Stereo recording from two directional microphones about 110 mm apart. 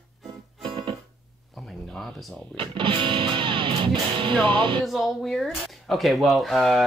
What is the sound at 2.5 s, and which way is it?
Music, 50° right (ahead or behind).